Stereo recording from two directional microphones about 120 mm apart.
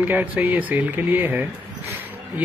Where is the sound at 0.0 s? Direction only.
15° right (ahead or behind).